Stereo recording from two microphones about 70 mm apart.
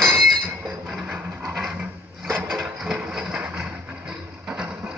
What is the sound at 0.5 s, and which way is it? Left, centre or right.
Chink, right.